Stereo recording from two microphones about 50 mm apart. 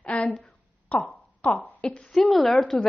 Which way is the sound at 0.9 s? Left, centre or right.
Left.